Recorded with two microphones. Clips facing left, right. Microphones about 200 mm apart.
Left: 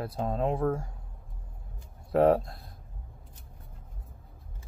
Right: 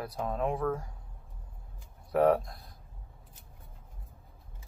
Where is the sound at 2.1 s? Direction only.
25° left (ahead or behind).